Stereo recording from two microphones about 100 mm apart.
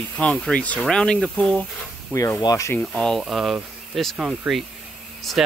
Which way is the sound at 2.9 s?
5° left (ahead or behind).